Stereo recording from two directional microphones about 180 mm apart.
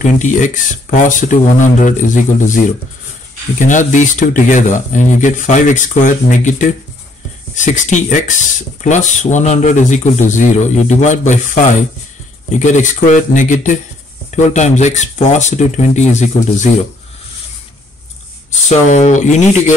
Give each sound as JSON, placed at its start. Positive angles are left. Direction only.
{"t": 0.0, "sound": "speech", "side_deg": 45}
{"t": 18.7, "sound": "speech", "side_deg": 40}